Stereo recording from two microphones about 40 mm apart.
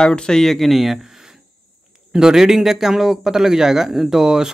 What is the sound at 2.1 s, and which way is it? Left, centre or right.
A man's voice, centre.